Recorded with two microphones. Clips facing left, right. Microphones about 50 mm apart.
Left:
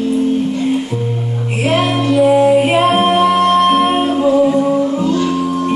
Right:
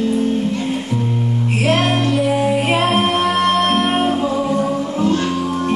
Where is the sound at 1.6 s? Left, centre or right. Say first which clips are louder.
Left 2 dB; centre.